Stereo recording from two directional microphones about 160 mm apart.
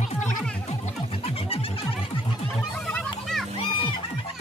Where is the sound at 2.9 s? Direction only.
5° left (ahead or behind).